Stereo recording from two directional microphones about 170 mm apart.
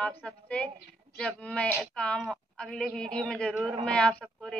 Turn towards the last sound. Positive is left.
turn(degrees=0)  # may be behind; listen again after turning